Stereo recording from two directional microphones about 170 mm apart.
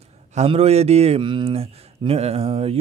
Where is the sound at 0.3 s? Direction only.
40° right (ahead or behind).